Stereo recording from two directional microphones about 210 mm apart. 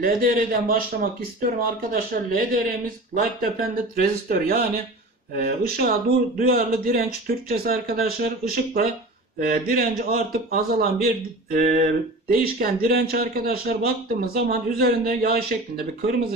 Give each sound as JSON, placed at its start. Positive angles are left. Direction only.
{"t": 0.0, "sound": "a man's voice", "side_deg": -45}
{"t": 11.5, "sound": "a sound", "side_deg": -40}
{"t": 12.4, "sound": "a man's voice", "side_deg": -45}